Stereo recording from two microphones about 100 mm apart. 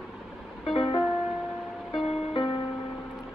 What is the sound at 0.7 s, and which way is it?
Music, 60° left (ahead or behind).